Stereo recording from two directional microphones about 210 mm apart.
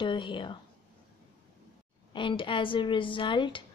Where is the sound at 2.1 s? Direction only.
25° left (ahead or behind).